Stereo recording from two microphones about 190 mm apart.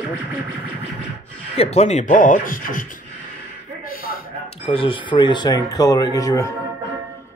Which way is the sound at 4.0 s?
50° left (ahead or behind).